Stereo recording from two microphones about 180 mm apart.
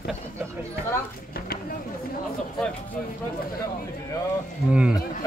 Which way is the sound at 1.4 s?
60° left (ahead or behind).